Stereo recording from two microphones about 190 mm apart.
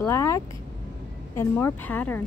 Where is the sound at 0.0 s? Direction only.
15° left (ahead or behind).